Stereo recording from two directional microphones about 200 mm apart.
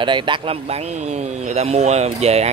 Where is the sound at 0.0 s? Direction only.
25° right (ahead or behind).